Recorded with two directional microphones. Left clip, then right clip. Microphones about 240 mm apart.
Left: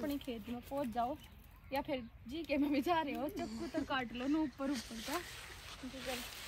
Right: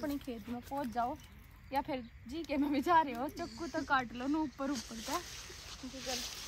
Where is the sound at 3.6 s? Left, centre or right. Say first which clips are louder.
Right 6 dB; centre.